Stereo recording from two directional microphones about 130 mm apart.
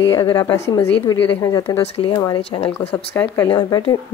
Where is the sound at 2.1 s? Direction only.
30° left (ahead or behind).